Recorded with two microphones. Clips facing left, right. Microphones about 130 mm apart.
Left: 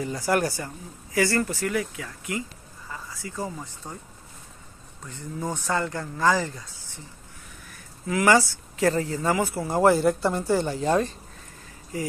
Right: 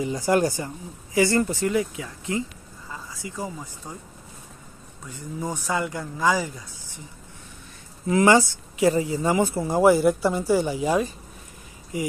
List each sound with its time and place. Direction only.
0.0 s speech: 20° right (ahead or behind)
5.0 s speech: 10° right (ahead or behind)
8.1 s speech: 25° right (ahead or behind)
9.8 s speech: 10° right (ahead or behind)